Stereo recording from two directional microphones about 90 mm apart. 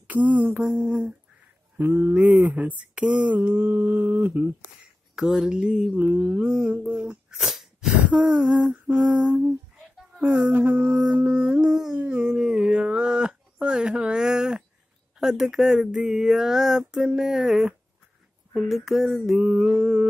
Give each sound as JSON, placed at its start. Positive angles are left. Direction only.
{"t": 0.0, "sound": "speech", "side_deg": -15}
{"t": 1.8, "sound": "a sound", "side_deg": -20}
{"t": 5.1, "sound": "speech", "side_deg": -5}
{"t": 5.9, "sound": "a sound", "side_deg": -20}
{"t": 6.8, "sound": "sneeze", "side_deg": -10}
{"t": 8.0, "sound": "speech", "side_deg": -10}